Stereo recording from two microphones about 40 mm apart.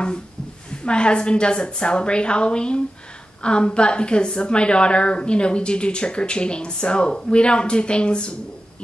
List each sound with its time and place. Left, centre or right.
0.7 s a woman's voice: left